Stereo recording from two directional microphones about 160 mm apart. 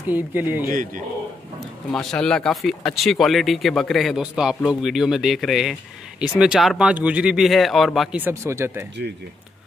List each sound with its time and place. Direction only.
0.1 s speech: 10° right (ahead or behind)
0.7 s speech: 55° right (ahead or behind)
1.9 s speech: 5° left (ahead or behind)
8.2 s speech: 15° right (ahead or behind)